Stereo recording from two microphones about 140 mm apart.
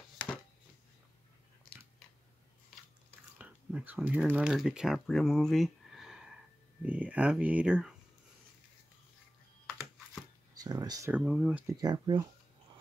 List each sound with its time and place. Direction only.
3.3 s speech: 10° right (ahead or behind)
10.6 s speech: 25° right (ahead or behind)
11.1 s speech: 5° right (ahead or behind)
11.6 s speech: 30° right (ahead or behind)